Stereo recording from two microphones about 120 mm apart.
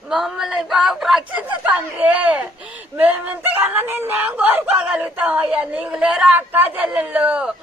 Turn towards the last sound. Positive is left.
turn(degrees=-10)  # may be behind; listen again after turning